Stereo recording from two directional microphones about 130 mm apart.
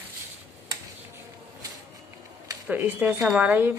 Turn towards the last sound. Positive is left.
turn(degrees=-15)  # may be behind; listen again after turning